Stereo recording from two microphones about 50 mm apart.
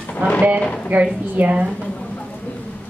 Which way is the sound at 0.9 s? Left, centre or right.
Right.